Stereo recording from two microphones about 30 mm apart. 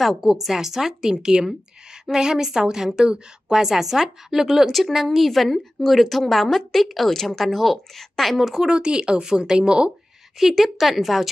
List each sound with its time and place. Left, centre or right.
0.0 s speech: centre
1.1 s speech: right
3.5 s speech: centre
4.7 s a woman's voice: centre
8.4 s speech: centre
8.6 s speech: right
10.4 s a woman's voice: centre